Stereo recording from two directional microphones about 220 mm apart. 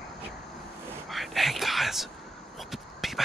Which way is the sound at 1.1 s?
Centre (ahead or behind).